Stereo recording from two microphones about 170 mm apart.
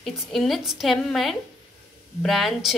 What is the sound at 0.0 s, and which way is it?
A woman's voice, centre (ahead or behind).